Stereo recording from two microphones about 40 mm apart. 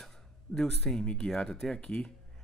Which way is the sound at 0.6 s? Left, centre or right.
Centre.